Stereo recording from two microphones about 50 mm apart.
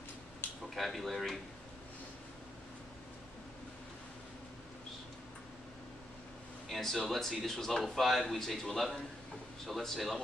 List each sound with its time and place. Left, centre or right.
0.4 s a sound: left
0.7 s speech: centre
6.7 s speech: centre